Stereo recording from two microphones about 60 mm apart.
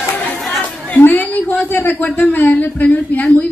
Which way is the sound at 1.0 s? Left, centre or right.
Left.